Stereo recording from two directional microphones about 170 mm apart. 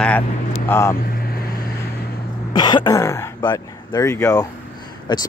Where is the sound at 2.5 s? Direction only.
25° left (ahead or behind).